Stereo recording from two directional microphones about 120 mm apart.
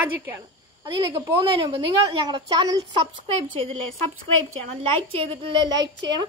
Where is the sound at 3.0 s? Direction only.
60° right (ahead or behind); by 5.9 s 40° right (ahead or behind).